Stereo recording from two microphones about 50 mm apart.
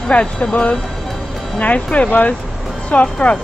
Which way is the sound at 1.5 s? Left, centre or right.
Left.